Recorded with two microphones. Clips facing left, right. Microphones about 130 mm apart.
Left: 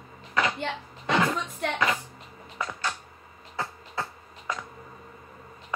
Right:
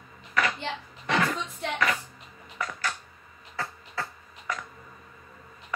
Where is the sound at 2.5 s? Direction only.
25° left (ahead or behind).